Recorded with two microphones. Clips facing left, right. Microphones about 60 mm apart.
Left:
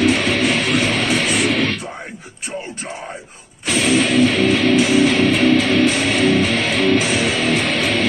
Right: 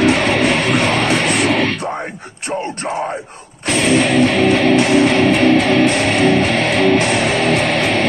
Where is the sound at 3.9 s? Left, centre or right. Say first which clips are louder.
Right 2 dB; centre.